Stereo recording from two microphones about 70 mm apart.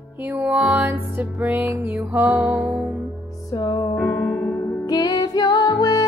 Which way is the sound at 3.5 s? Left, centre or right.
Left.